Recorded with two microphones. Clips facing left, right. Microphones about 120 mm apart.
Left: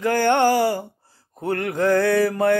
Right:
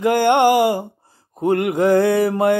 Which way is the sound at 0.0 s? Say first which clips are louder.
Right 3 dB; 20° right (ahead or behind).